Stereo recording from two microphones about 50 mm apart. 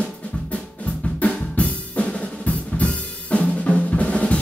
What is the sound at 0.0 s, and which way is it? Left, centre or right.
Drum, left.